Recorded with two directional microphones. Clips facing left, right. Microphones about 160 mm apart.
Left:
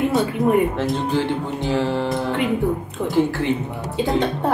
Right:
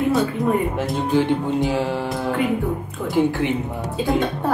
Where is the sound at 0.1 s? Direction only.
20° left (ahead or behind).